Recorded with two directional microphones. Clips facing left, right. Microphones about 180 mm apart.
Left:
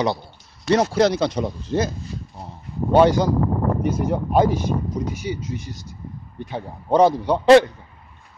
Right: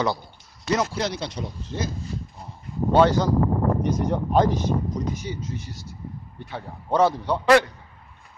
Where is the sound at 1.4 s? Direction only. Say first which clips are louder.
Left 8 dB; 65° left (ahead or behind).